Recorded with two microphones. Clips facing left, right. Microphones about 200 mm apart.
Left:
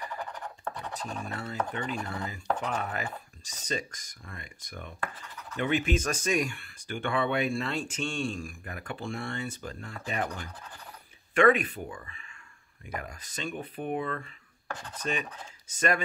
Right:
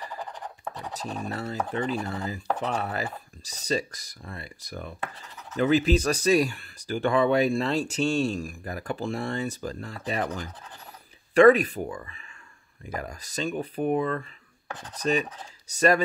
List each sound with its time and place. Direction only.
1.3 s speech: 35° right (ahead or behind)
11.3 s speech: 40° right (ahead or behind)